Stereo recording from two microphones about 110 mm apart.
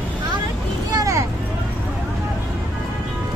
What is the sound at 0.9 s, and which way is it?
Vehicle, 30° right (ahead or behind).